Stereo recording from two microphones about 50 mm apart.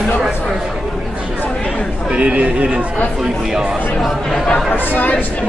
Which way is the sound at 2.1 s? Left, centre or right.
Right.